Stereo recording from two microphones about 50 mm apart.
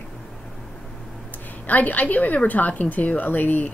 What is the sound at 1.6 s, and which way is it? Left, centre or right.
A woman's voice, left.